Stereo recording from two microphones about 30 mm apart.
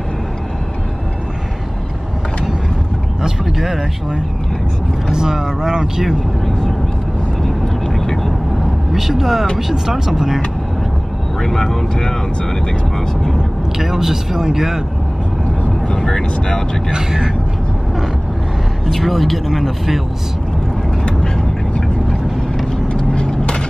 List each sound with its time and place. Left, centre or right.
3.2 s a sound: centre
3.5 s speech: centre
5.1 s speech: centre
7.9 s vehicle: centre
8.9 s speech: centre
11.4 s speech: centre
13.3 s speech: centre
15.9 s speech: left
16.9 s speech: centre
18.9 s speech: centre
22.9 s vehicle: left